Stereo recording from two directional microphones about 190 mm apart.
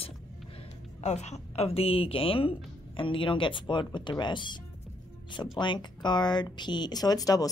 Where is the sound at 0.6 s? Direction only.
35° left (ahead or behind).